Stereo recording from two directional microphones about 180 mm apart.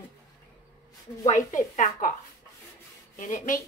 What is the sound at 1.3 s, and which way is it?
Speech, 45° left (ahead or behind).